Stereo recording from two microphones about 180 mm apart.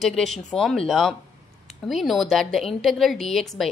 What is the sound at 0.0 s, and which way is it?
A woman's voice, centre (ahead or behind).